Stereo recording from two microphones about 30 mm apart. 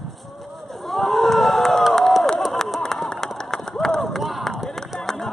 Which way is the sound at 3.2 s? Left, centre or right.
Centre.